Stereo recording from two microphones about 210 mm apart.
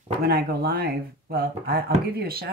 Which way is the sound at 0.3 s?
50° right (ahead or behind).